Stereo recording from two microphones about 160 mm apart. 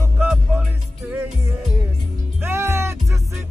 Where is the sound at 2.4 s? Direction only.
15° right (ahead or behind).